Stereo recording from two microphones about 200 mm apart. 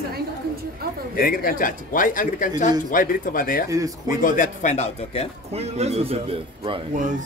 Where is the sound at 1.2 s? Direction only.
45° left (ahead or behind).